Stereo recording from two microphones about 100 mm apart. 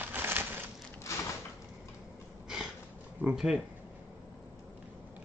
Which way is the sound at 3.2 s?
5° right (ahead or behind).